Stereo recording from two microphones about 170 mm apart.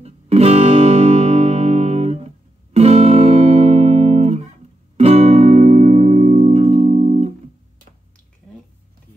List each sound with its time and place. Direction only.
0.0 s music: 40° right (ahead or behind)